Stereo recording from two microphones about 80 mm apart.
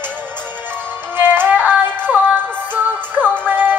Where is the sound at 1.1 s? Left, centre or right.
Right.